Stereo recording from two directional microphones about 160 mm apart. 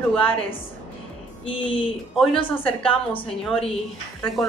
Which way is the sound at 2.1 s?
5° left (ahead or behind).